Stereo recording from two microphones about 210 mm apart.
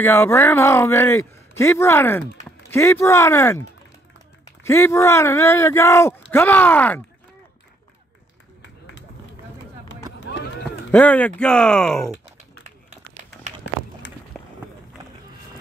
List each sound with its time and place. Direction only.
0.0 s speech: 10° left (ahead or behind)
4.6 s speech: 15° left (ahead or behind)
10.3 s run: 55° left (ahead or behind)
10.9 s speech: 5° left (ahead or behind)
12.6 s run: 35° right (ahead or behind)
14.3 s run: 5° left (ahead or behind)